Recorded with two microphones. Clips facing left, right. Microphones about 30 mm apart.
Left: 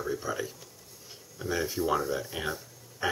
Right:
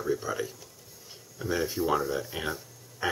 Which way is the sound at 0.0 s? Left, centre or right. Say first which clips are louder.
Right 2 dB; centre.